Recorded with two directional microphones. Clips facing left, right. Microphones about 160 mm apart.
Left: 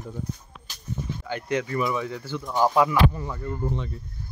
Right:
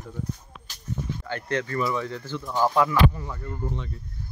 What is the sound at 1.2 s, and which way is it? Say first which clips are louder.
Speech: left 2 dB; 10° left (ahead or behind).